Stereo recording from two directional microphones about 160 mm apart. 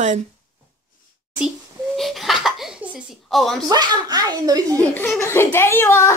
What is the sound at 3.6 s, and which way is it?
A child's voice, 25° right (ahead or behind).